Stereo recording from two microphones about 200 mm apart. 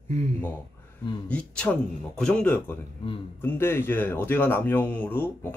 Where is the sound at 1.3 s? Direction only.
5° left (ahead or behind).